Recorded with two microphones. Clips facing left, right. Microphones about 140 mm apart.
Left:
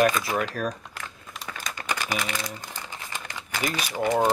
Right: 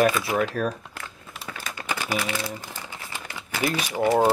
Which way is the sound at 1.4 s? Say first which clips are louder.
Even; 10° right (ahead or behind).